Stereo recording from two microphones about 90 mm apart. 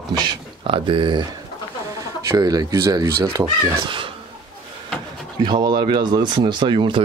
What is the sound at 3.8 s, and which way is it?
Speech, 70° right (ahead or behind).